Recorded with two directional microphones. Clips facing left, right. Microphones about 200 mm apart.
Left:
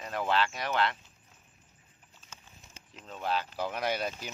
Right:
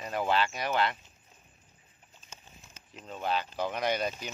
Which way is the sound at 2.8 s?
30° left (ahead or behind).